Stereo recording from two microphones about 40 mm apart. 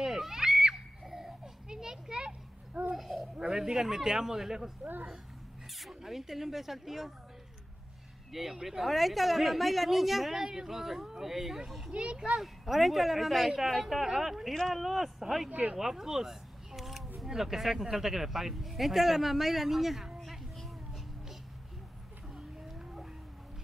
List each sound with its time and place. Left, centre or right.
0.0 s children playing: centre
3.0 s a sound: centre
3.3 s a man's voice: centre
5.8 s speech: centre
8.3 s a woman's voice: centre
11.9 s a child's voice: right
12.4 s a woman's voice: centre
15.7 s a sound: centre
17.3 s speech: centre
22.3 s a sound: centre